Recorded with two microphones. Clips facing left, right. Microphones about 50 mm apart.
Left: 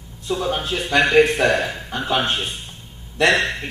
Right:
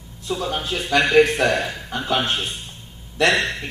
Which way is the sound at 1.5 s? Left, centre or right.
Centre.